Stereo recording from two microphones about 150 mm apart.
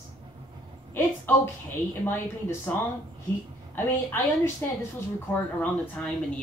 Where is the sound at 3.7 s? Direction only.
15° left (ahead or behind).